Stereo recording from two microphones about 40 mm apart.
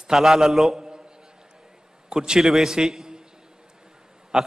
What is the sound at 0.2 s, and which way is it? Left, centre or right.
Speech, centre.